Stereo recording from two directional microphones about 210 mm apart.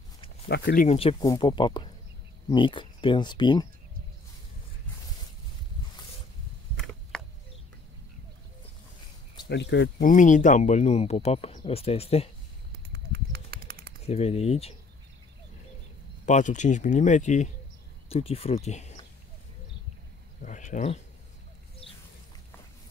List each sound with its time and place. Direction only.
0.5 s speech: 50° left (ahead or behind)
0.8 s speech: 25° left (ahead or behind)
6.9 s a sound: 5° left (ahead or behind)
9.5 s speech: 55° left (ahead or behind)
10.0 s speech: 35° left (ahead or behind)
12.9 s bird: 50° right (ahead or behind)
14.0 s speech: 30° left (ahead or behind)
16.3 s speech: 35° left (ahead or behind)
20.4 s speech: 35° left (ahead or behind)